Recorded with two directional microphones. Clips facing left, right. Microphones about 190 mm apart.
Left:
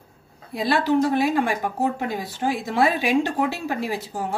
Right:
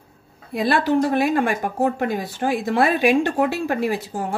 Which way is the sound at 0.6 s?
55° right (ahead or behind).